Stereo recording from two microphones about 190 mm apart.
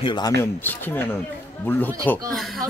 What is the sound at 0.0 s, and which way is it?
Speech, 25° left (ahead or behind).